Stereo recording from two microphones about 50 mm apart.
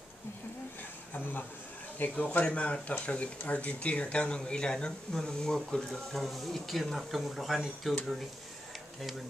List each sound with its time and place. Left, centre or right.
1.1 s a man's voice: left
2.2 s speech: left
5.9 s speech: centre